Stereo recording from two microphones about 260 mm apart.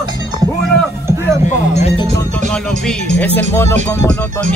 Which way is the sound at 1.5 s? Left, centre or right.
Left.